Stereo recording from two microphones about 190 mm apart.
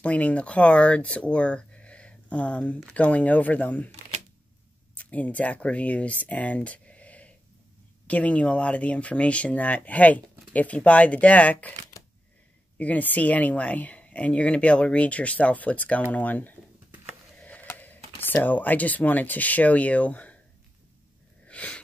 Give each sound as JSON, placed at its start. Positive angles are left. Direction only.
{"t": 0.0, "sound": "speech", "side_deg": 5}
{"t": 4.9, "sound": "speech", "side_deg": 5}
{"t": 21.5, "sound": "a sound", "side_deg": 5}